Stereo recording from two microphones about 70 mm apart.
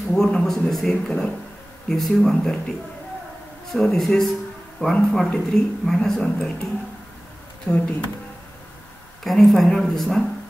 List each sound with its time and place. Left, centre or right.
0.1 s speech: centre
3.7 s a man's voice: centre
5.3 s a woman's voice: centre
7.6 s speech: left
9.2 s speech: centre